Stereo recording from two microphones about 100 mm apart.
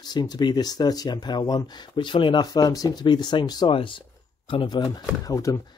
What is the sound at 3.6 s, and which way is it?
Speech, 60° left (ahead or behind).